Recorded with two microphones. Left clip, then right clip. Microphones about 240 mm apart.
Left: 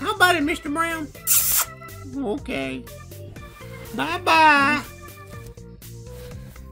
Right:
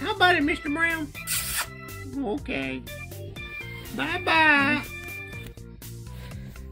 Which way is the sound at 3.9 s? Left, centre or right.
Left.